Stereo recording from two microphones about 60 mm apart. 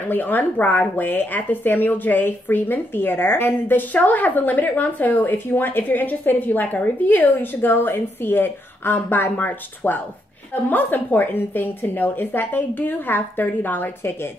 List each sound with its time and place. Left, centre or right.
0.1 s speech: left